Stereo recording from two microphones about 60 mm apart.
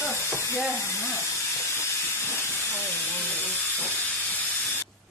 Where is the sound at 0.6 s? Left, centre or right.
Left.